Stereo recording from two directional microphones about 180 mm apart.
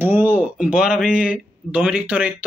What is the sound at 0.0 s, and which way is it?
Speech, 10° right (ahead or behind).